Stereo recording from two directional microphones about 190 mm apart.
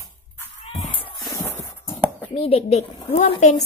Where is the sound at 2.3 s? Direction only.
30° left (ahead or behind).